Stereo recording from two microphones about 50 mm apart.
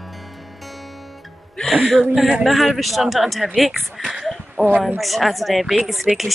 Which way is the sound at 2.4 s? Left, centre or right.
Centre.